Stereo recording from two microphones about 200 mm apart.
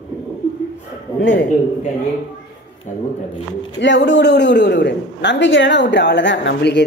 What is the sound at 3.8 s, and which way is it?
A woman's voice, 60° left (ahead or behind).